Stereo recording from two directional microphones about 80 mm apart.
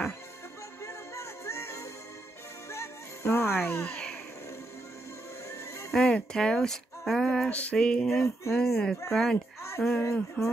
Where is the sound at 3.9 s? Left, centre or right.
Centre.